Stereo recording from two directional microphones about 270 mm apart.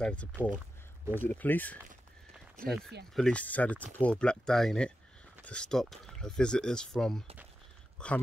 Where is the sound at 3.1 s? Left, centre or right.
Centre.